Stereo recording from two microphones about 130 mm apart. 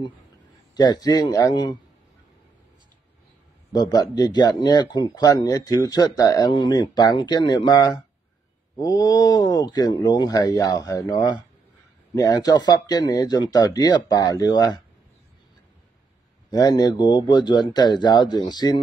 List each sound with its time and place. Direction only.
0.7 s a man's voice: 30° left (ahead or behind)
3.7 s a man's voice: 30° left (ahead or behind)
16.4 s a man's voice: 30° left (ahead or behind)